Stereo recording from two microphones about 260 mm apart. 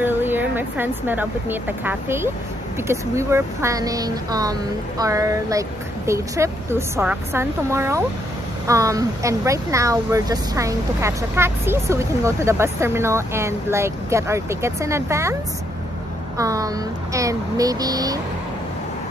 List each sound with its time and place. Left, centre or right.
0.0 s speech: centre
16.3 s speech: centre